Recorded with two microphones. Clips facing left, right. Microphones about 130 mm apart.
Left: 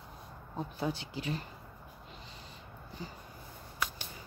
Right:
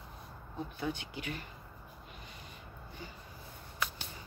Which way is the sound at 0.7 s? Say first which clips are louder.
Left 3 dB; 35° left (ahead or behind).